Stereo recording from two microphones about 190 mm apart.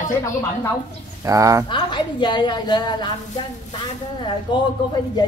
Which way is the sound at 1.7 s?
25° left (ahead or behind).